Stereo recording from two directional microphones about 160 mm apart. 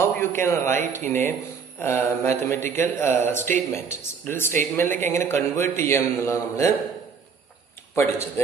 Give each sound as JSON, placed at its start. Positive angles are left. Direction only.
{"t": 0.0, "sound": "a man's voice", "side_deg": 15}
{"t": 7.9, "sound": "a man's voice", "side_deg": 15}